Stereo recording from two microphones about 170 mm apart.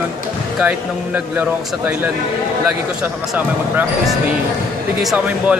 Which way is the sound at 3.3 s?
10° right (ahead or behind).